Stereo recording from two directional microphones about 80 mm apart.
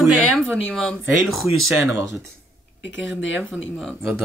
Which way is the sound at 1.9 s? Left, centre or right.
Right.